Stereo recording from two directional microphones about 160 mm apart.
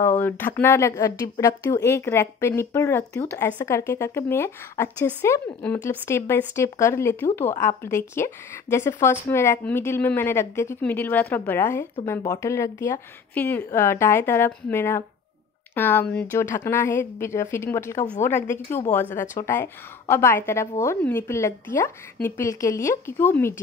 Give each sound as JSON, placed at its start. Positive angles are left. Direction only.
{"t": 0.0, "sound": "speech", "side_deg": 10}
{"t": 19.1, "sound": "speech", "side_deg": 55}
{"t": 19.4, "sound": "speech", "side_deg": 15}